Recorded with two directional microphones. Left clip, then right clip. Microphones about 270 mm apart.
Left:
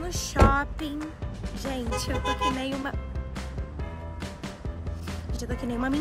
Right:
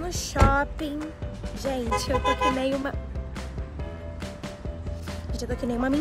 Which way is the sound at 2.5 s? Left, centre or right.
Centre.